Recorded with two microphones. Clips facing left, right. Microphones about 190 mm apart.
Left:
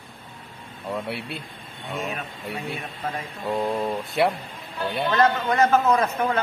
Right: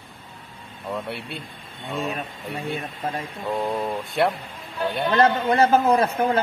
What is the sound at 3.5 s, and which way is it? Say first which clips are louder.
Speech: left 1 dB; centre (ahead or behind).